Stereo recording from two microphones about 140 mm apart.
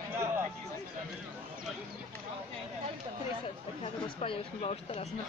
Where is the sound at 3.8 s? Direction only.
40° left (ahead or behind).